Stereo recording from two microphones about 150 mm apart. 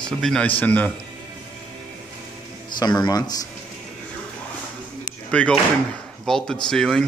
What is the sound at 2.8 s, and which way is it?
Speech, 25° left (ahead or behind).